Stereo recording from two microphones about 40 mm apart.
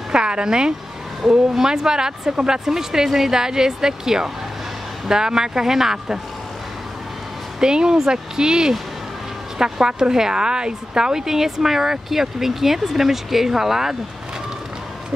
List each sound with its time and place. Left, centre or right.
0.1 s a sound: right
1.2 s speech: centre
7.6 s speech: centre